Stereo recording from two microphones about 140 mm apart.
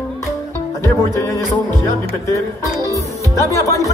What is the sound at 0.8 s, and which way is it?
Music, 20° left (ahead or behind).